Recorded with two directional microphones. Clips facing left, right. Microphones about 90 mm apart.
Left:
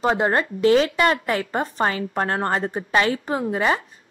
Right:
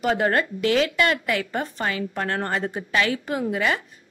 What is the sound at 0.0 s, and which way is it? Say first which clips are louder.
A woman's voice: left 1 dB; 25° left (ahead or behind).